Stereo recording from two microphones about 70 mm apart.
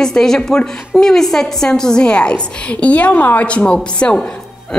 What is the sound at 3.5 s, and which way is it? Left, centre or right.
Speech, centre.